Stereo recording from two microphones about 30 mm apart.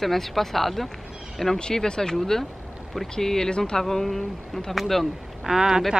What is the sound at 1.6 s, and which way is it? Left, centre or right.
Speech, left.